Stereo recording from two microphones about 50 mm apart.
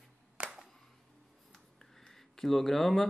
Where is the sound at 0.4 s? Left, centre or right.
Right.